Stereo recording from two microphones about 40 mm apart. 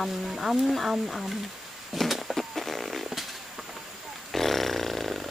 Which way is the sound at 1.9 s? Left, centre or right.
Centre.